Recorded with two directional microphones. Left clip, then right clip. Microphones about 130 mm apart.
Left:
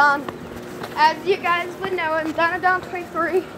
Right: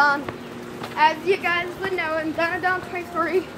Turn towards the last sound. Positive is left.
turn(degrees=5)  # may be behind; listen again after turning